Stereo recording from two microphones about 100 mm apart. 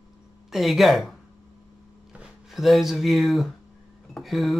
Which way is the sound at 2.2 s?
Centre (ahead or behind).